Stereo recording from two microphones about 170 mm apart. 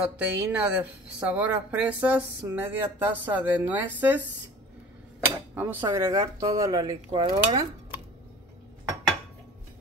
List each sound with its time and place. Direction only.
0.0 s speech: 5° right (ahead or behind)
5.5 s speech: 10° right (ahead or behind)